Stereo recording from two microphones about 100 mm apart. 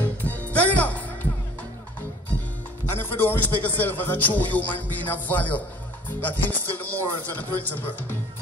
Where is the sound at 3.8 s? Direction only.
20° left (ahead or behind).